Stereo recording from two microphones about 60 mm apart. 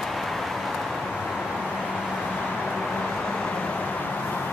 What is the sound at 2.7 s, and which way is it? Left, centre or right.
Vehicle, centre.